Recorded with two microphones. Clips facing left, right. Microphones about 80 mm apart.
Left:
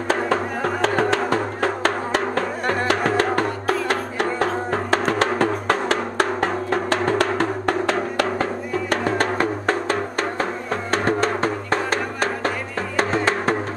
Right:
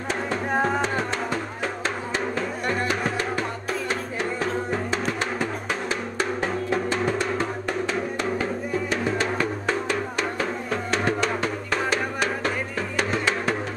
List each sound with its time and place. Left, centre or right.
0.3 s music: left
8.9 s music: left
9.4 s music: left